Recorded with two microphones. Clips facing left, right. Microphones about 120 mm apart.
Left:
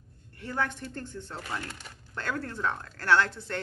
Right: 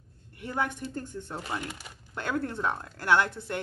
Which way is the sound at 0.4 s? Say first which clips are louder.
Right 1 dB; 15° right (ahead or behind).